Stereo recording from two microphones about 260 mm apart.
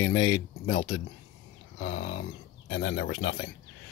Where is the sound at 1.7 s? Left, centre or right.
Left.